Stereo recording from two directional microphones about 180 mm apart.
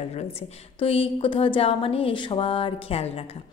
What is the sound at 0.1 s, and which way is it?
A woman's voice, 35° left (ahead or behind).